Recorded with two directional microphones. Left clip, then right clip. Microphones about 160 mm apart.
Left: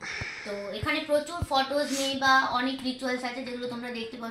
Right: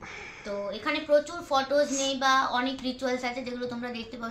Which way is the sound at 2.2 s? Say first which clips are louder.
Left 2 dB; 30° right (ahead or behind).